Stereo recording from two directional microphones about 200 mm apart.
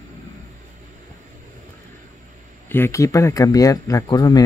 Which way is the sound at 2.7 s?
15° left (ahead or behind).